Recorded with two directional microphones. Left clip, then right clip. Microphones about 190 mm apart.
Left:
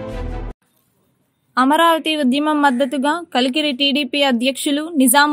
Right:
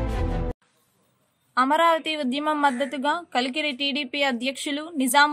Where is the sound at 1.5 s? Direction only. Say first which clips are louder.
Left 6 dB; 40° left (ahead or behind).